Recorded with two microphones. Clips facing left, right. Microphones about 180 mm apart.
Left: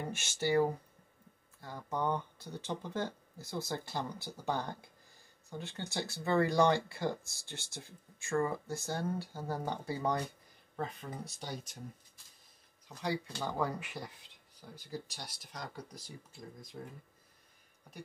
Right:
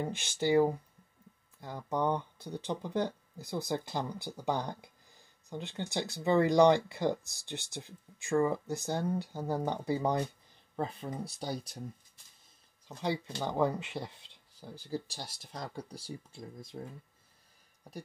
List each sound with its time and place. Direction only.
0.0 s speech: 15° right (ahead or behind)
10.8 s speech: 30° right (ahead or behind)
12.8 s speech: 25° right (ahead or behind)